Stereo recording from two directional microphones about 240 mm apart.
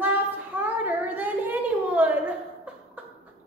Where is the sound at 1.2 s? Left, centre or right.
Centre.